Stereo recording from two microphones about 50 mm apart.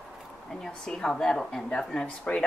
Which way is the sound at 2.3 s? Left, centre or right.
Left.